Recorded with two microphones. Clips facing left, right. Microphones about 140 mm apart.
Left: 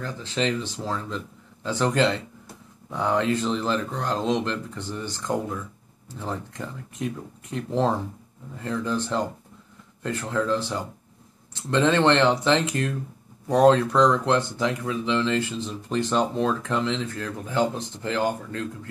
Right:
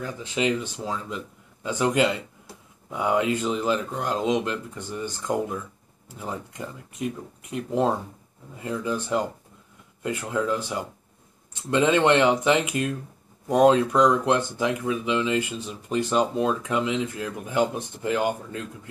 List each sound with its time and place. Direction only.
0.0 s speech: 10° right (ahead or behind)
6.1 s speech: 10° right (ahead or behind)